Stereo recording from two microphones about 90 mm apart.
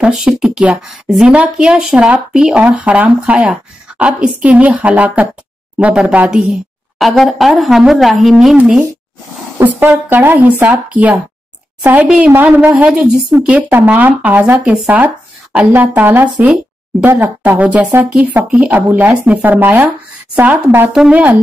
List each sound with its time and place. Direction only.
0.0 s speech: 5° right (ahead or behind)
8.5 s a woman's voice: 15° right (ahead or behind)
13.0 s speech: 5° right (ahead or behind)
13.6 s speech: 15° right (ahead or behind)
14.6 s a woman's voice: 10° right (ahead or behind)